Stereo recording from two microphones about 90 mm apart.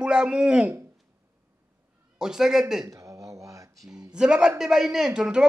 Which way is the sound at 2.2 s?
5° right (ahead or behind).